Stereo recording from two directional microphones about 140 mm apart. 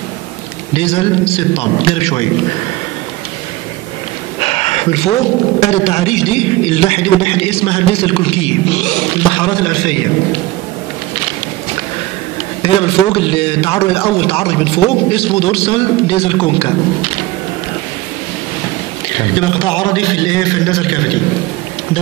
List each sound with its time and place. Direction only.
0.7 s a man's voice: 45° left (ahead or behind)
4.4 s a sound: 45° left (ahead or behind)
5.7 s a man's voice: 50° left (ahead or behind)
9.4 s a man's voice: 30° left (ahead or behind)
12.6 s a man's voice: 40° left (ahead or behind)
19.3 s a man's voice: 30° left (ahead or behind)